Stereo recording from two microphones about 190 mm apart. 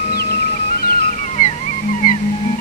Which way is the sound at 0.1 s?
55° left (ahead or behind).